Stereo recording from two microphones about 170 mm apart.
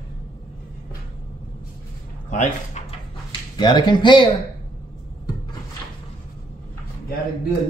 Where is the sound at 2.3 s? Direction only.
45° left (ahead or behind).